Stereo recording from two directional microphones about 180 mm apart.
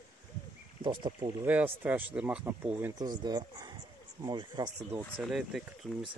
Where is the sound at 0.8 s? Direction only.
25° right (ahead or behind).